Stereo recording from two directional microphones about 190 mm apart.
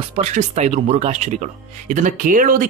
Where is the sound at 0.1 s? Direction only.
40° right (ahead or behind).